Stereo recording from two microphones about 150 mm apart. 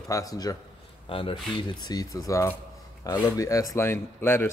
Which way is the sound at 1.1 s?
35° left (ahead or behind).